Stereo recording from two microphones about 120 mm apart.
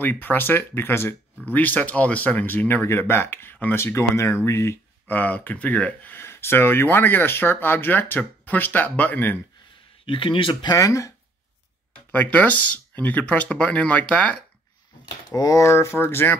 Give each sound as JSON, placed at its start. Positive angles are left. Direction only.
{"t": 0.0, "sound": "speech", "side_deg": 15}
{"t": 10.0, "sound": "speech", "side_deg": 45}
{"t": 12.1, "sound": "speech", "side_deg": 15}
{"t": 15.3, "sound": "speech", "side_deg": 30}